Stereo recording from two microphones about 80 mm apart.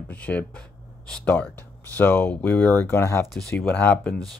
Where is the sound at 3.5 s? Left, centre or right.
Left.